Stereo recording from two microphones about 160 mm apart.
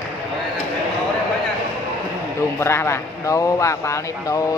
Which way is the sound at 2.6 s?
15° left (ahead or behind).